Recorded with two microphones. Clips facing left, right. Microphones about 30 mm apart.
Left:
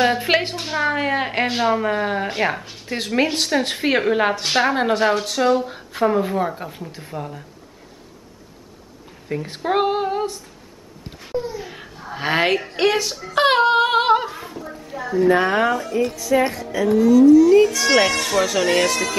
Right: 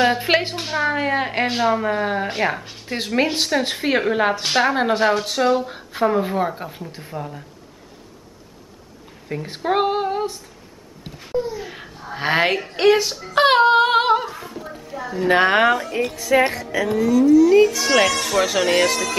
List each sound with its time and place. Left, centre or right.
0.0 s a woman's voice: centre
9.3 s a woman's voice: centre
11.5 s a woman's voice: centre
14.0 s a sound: centre
15.2 s speech: right
16.2 s speech: right
17.0 s a woman's voice: centre
18.4 s a woman's voice: centre